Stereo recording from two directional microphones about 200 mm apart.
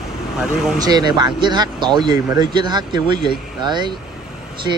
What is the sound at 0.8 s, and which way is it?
Speech, 20° right (ahead or behind).